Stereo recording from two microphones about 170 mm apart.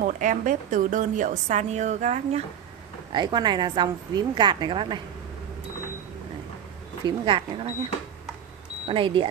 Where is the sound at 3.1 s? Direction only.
25° right (ahead or behind).